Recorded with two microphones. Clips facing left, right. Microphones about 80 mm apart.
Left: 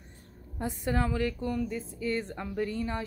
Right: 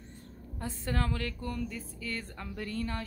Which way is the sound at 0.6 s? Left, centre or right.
Centre.